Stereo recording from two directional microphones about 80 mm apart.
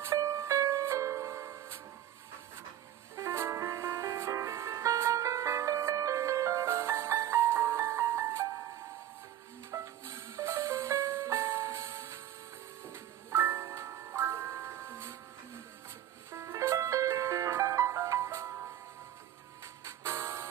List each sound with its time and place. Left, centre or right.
0.0 s music: right
3.2 s music: right
9.7 s music: right
13.3 s music: right
19.8 s music: right